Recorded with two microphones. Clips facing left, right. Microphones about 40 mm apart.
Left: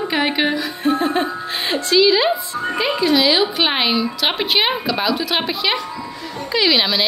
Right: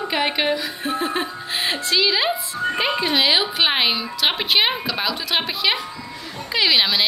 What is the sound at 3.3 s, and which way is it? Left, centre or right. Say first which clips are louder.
Speech: left 2 dB; centre.